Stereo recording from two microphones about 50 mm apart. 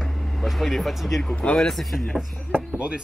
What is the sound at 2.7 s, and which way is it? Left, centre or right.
Speech, right.